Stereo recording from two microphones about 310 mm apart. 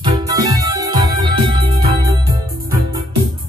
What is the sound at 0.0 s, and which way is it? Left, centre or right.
Music, centre.